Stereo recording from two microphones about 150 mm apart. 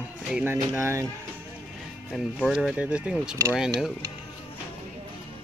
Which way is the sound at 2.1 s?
Centre (ahead or behind).